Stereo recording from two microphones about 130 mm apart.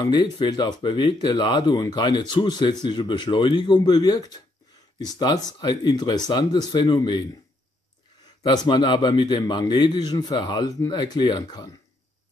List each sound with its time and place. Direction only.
0.0 s speech: 35° left (ahead or behind)
8.5 s speech: 35° left (ahead or behind)